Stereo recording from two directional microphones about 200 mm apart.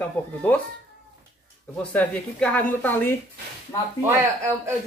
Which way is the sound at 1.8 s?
5° left (ahead or behind).